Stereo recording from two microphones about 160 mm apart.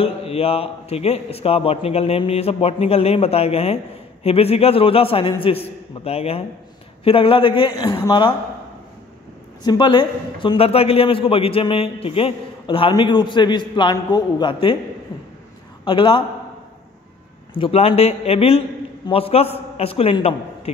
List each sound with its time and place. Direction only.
0.0 s a man's voice: 40° left (ahead or behind)
9.6 s a man's voice: 30° left (ahead or behind)
15.8 s a man's voice: 30° left (ahead or behind)
17.6 s a man's voice: 40° left (ahead or behind)